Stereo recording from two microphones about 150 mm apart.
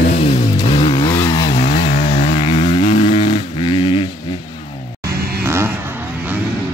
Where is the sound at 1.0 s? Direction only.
20° left (ahead or behind).